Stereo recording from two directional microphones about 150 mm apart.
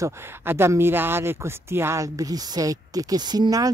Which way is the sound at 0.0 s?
15° right (ahead or behind).